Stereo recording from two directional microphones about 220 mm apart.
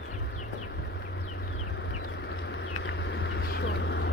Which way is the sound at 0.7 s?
50° left (ahead or behind).